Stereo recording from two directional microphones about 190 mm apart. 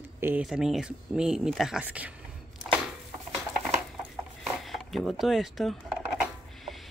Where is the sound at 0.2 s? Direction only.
5° right (ahead or behind).